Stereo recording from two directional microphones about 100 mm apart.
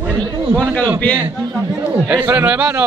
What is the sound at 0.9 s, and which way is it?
Speech, 15° left (ahead or behind).